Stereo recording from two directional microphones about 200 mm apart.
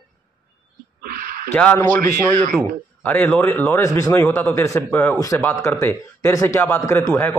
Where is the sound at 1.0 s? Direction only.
45° right (ahead or behind).